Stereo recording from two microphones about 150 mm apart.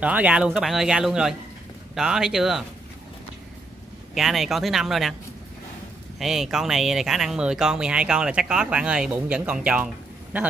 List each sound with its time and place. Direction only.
0.0 s speech: 10° right (ahead or behind)
4.1 s speech: centre (ahead or behind)
6.1 s a man's voice: centre (ahead or behind)